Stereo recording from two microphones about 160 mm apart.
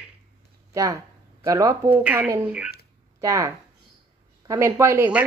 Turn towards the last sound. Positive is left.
turn(degrees=-15)  # may be behind; listen again after turning